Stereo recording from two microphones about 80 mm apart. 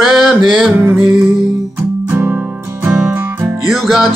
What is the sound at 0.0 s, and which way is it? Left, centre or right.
Music, centre.